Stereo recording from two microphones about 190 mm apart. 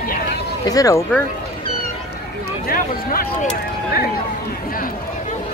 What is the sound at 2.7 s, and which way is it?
Speech, 50° left (ahead or behind).